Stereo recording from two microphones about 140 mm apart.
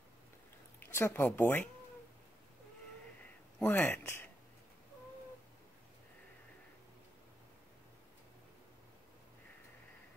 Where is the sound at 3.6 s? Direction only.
15° left (ahead or behind).